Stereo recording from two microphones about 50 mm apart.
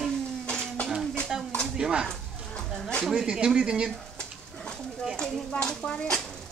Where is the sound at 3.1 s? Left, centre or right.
Centre.